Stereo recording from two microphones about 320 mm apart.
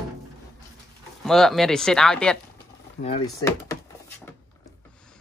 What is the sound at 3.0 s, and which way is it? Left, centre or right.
Speech, centre.